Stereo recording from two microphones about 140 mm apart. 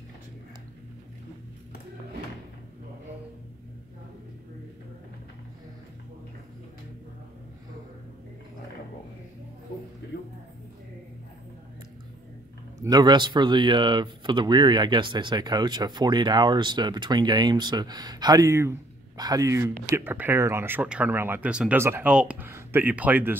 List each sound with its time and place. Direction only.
12.8 s speech: 30° right (ahead or behind); by 23.3 s 10° right (ahead or behind)